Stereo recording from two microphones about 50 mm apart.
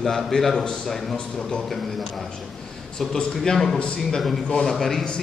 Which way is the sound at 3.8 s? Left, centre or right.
Left.